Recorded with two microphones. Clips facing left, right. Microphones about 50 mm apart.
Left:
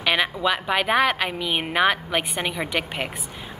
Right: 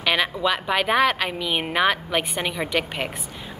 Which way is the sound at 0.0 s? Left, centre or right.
Centre.